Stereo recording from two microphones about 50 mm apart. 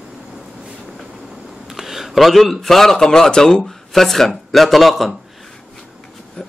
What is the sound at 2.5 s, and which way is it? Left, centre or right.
A man's voice, centre.